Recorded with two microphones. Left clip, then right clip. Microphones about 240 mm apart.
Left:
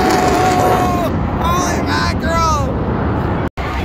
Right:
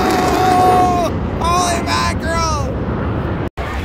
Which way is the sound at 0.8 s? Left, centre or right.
Centre.